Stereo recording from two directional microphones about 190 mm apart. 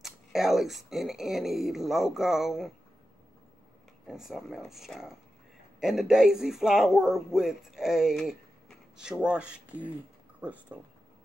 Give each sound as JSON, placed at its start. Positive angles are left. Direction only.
{"t": 0.0, "sound": "speech", "side_deg": 0}
{"t": 4.1, "sound": "speech", "side_deg": 0}